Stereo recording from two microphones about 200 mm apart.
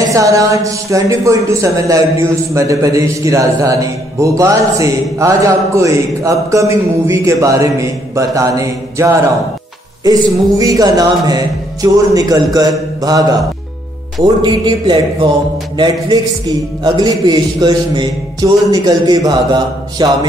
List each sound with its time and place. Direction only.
0.1 s speech: 15° right (ahead or behind)
10.6 s a man's voice: 20° right (ahead or behind)